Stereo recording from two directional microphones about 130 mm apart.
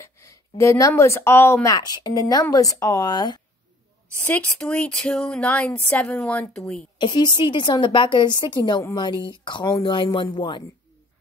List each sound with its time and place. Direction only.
0.0 s a woman's voice: 20° left (ahead or behind)
4.2 s speech: 10° left (ahead or behind)
7.0 s a woman's voice: 35° left (ahead or behind)